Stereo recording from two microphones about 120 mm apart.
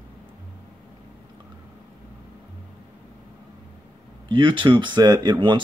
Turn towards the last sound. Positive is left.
turn(degrees=-40)  # may be behind; listen again after turning